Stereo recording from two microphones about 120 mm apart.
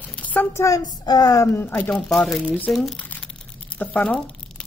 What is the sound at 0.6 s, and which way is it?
Speech, 25° left (ahead or behind).